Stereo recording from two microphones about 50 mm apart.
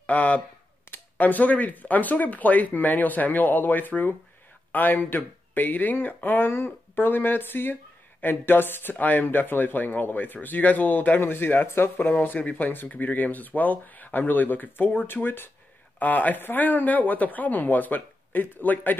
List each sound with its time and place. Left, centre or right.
0.0 s speech: left
0.8 s speech: left
11.1 s speech: left
12.1 s speech: left
16.0 s speech: left